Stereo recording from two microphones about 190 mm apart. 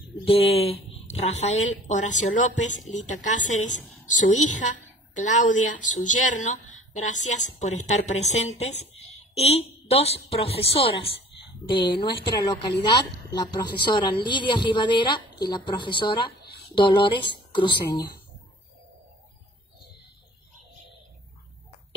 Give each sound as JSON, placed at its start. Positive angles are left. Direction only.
{"t": 0.2, "sound": "a woman's voice", "side_deg": 30}